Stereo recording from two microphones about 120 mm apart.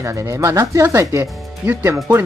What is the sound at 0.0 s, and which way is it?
Speech, 25° right (ahead or behind).